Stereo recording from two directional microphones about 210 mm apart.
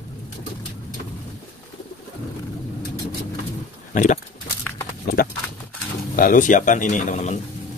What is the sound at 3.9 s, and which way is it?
Speech, 35° left (ahead or behind).